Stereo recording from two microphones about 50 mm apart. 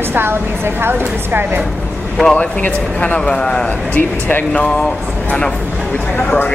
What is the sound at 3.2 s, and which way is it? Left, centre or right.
Speech, centre.